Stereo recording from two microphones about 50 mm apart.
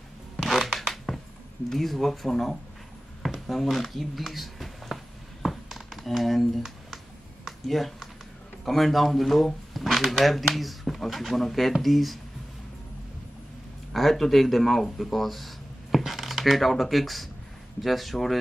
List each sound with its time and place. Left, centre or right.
0.4 s zipper: centre
1.7 s speech: centre
3.2 s a sound: centre
8.6 s speech: centre
13.9 s speech: centre